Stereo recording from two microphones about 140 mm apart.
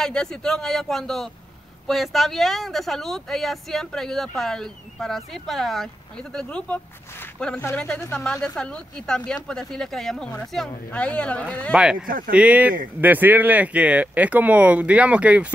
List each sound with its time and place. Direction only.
0.0 s speech: 5° left (ahead or behind)
11.7 s speech: 5° right (ahead or behind)
12.1 s speech: 90° right
12.4 s speech: 10° right (ahead or behind)